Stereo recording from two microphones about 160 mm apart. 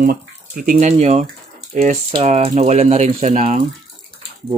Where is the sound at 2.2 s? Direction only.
45° right (ahead or behind).